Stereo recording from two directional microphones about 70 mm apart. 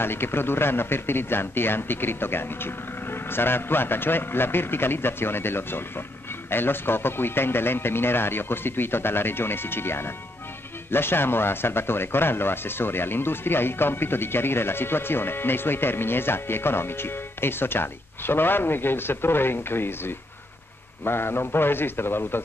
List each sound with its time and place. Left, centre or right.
0.0 s speech: left